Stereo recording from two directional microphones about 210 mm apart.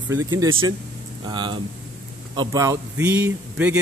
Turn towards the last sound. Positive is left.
turn(degrees=-10)  # may be behind; listen again after turning